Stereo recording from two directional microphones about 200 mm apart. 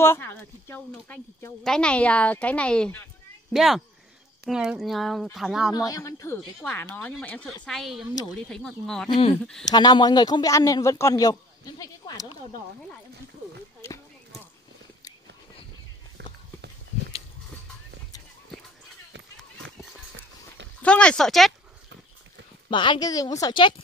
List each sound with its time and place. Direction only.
0.0 s speech: 10° left (ahead or behind)
5.8 s speech: 15° left (ahead or behind)
9.7 s a man's voice: 20° left (ahead or behind)
13.7 s a sound: 15° left (ahead or behind)
20.8 s speech: 5° left (ahead or behind)
22.7 s a man's voice: 25° left (ahead or behind)